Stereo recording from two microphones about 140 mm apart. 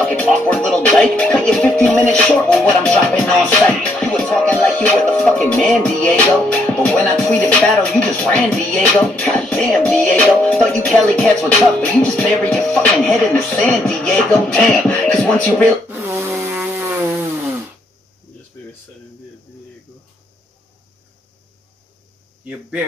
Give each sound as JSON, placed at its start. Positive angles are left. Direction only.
{"t": 0.0, "sound": "music", "side_deg": 10}
{"t": 16.1, "sound": "chainsaw", "side_deg": -20}
{"t": 22.4, "sound": "speech", "side_deg": -10}